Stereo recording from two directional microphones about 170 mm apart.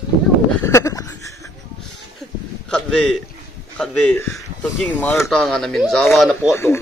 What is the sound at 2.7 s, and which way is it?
Speech, 5° left (ahead or behind).